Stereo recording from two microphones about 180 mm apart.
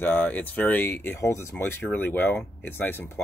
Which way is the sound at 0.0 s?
10° left (ahead or behind).